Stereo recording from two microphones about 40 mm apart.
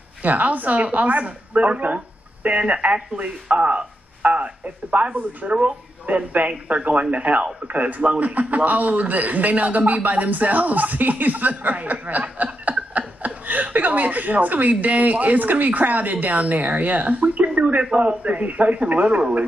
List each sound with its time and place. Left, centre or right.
0.2 s a man's voice: right
4.9 s speech: right
5.4 s a man's voice: right
17.6 s a sound: right
17.9 s a man's voice: right